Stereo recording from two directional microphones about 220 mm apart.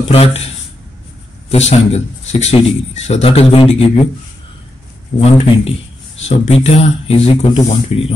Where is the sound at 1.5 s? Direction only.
30° left (ahead or behind).